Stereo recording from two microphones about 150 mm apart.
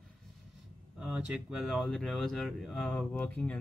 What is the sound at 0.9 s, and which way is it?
Speech, 5° right (ahead or behind).